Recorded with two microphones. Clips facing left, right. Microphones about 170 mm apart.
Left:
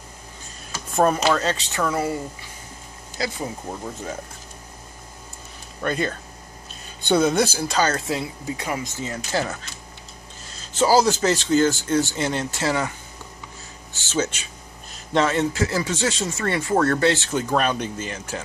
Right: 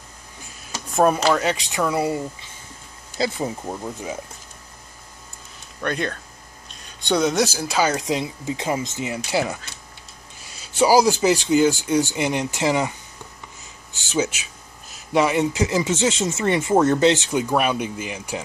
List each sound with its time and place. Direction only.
0.9 s speech: 5° right (ahead or behind)
3.2 s speech: 25° right (ahead or behind)
3.6 s speech: 10° right (ahead or behind)
5.8 s speech: centre (ahead or behind); by 12.9 s 15° right (ahead or behind)
13.9 s speech: 15° right (ahead or behind)